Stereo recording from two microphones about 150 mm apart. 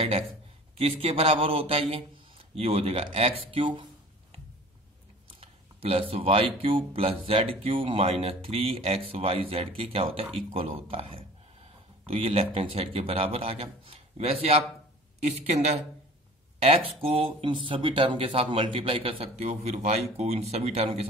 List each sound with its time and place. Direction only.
0.7 s speech: 40° right (ahead or behind)
5.4 s speech: 40° right (ahead or behind)